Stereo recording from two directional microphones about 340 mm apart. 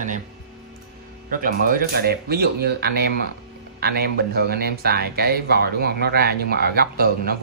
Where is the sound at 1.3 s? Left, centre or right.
Right.